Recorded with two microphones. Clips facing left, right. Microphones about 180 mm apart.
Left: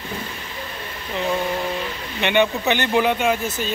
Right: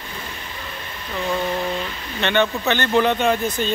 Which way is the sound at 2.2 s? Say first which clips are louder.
Left 1 dB; 15° left (ahead or behind).